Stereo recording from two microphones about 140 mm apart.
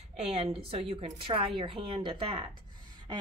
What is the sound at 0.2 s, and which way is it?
A woman's voice, 45° right (ahead or behind).